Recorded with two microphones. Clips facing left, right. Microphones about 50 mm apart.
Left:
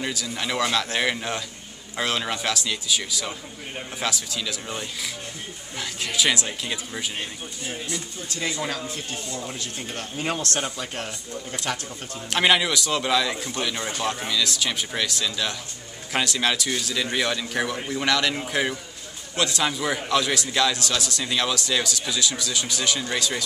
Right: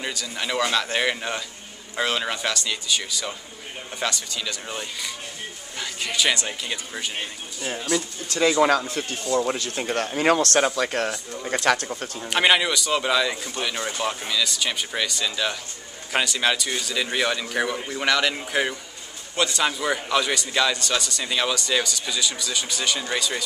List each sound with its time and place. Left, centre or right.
0.0 s a man's voice: centre
7.9 s speech: right
8.9 s speech: right
12.3 s a man's voice: centre